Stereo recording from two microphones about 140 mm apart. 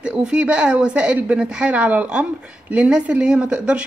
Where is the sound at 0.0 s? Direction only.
5° right (ahead or behind).